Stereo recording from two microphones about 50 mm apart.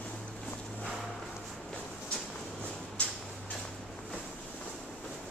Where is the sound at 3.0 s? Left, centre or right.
Left.